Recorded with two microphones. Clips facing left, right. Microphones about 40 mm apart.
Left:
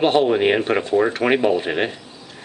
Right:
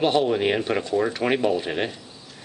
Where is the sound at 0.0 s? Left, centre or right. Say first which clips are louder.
Left 4 dB; left.